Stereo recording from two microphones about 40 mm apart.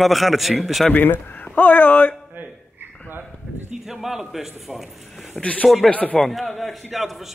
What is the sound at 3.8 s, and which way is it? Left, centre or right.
Speech, centre.